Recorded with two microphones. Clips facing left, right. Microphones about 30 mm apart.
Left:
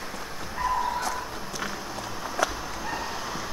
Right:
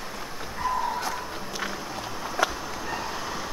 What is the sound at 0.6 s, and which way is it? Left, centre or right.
Dog, centre.